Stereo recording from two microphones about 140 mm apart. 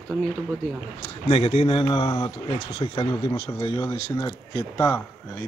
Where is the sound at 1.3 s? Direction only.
45° left (ahead or behind); by 5.0 s 25° left (ahead or behind).